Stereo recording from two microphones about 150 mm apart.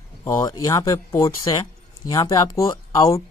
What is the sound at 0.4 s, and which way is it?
Speech, 20° left (ahead or behind).